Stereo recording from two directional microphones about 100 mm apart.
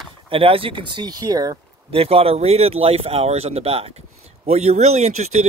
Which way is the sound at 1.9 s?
70° right (ahead or behind).